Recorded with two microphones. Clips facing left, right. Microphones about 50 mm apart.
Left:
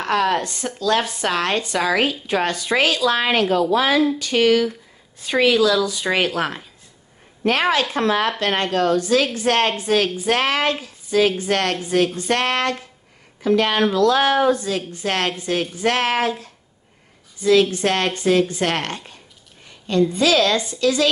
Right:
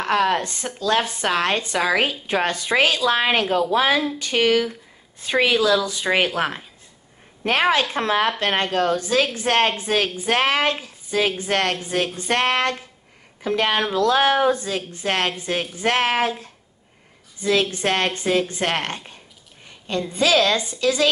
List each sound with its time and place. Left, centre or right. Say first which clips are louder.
0.0 s speech: even; centre